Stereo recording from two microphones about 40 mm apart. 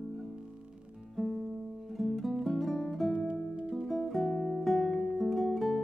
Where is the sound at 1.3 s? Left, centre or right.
Centre.